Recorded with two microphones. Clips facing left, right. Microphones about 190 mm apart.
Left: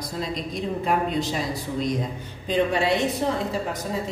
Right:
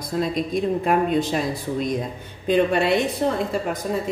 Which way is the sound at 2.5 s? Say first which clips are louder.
Right 3 dB; 60° right (ahead or behind).